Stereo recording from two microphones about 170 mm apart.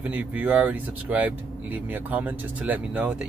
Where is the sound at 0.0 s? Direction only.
10° right (ahead or behind).